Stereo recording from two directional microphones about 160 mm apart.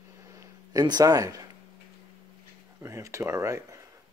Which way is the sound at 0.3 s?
20° right (ahead or behind).